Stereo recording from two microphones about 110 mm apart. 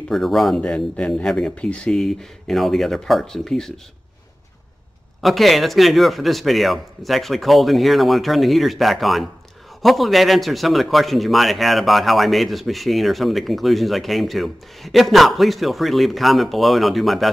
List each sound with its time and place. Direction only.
0.1 s a man's voice: centre (ahead or behind)
5.2 s a man's voice: centre (ahead or behind)